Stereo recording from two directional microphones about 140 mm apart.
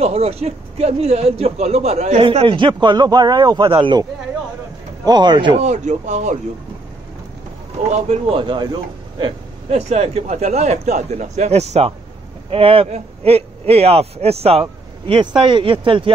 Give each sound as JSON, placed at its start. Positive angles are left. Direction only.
{"t": 0.0, "sound": "a man's voice", "side_deg": -45}
{"t": 2.2, "sound": "a man's voice", "side_deg": -35}
{"t": 5.0, "sound": "a man's voice", "side_deg": -30}
{"t": 5.6, "sound": "speech", "side_deg": -55}
{"t": 7.9, "sound": "a man's voice", "side_deg": -50}
{"t": 8.4, "sound": "speech", "side_deg": -35}
{"t": 9.7, "sound": "a man's voice", "side_deg": -50}